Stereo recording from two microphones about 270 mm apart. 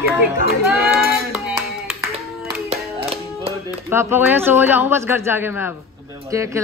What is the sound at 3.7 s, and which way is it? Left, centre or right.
Speech, centre.